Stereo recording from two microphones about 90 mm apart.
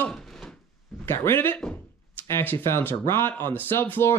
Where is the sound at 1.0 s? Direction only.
25° left (ahead or behind).